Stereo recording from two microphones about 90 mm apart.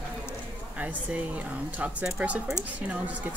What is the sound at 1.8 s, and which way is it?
Speech, 15° right (ahead or behind).